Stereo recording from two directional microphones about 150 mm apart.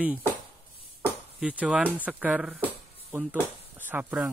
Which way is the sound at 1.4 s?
5° right (ahead or behind).